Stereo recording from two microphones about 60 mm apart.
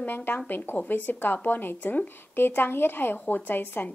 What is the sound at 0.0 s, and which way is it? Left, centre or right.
Speech, left.